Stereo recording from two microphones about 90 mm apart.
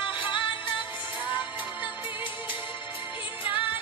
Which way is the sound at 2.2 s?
65° left (ahead or behind).